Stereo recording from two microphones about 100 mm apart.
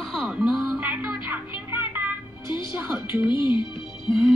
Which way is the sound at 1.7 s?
20° right (ahead or behind).